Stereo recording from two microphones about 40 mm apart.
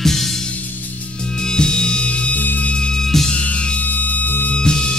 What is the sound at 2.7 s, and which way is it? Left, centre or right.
Music, left.